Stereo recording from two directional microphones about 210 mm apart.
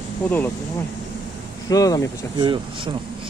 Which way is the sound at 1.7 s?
15° left (ahead or behind).